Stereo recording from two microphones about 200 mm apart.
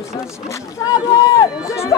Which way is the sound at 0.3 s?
15° left (ahead or behind).